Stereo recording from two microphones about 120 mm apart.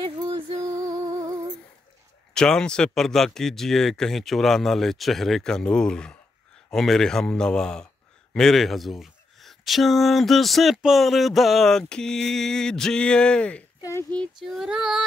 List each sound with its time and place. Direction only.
0.3 s music: 30° right (ahead or behind)
2.3 s speech: 5° left (ahead or behind)
13.7 s a sound: 25° left (ahead or behind)
14.4 s speech: 5° right (ahead or behind)